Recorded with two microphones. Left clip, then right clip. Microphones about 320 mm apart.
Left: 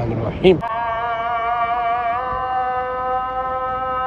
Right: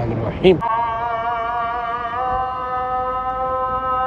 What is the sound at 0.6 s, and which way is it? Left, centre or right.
Music, centre.